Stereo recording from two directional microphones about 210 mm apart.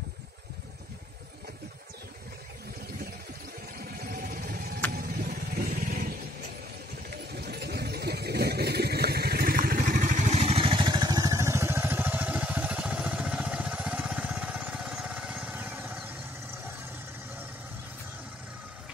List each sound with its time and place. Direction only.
4.1 s a sound: 45° right (ahead or behind)
4.9 s vehicle: 45° right (ahead or behind)
7.3 s vehicle: 50° right (ahead or behind); by 16.1 s 10° right (ahead or behind)